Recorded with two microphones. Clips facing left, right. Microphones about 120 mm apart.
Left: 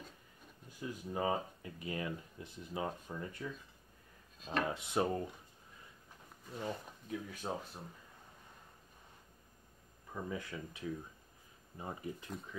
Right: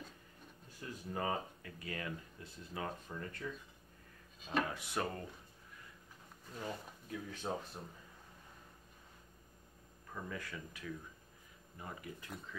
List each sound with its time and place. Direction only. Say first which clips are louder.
0.7 s speech: left 3 dB; 15° left (ahead or behind)
4.4 s speech: even; centre (ahead or behind)
4.6 s speech: left 5 dB; 20° left (ahead or behind)
7.1 s speech: left 1 dB; 5° left (ahead or behind)
10.1 s speech: left 3 dB; 20° left (ahead or behind)